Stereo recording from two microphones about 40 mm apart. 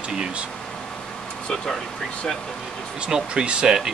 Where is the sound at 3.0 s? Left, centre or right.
Centre.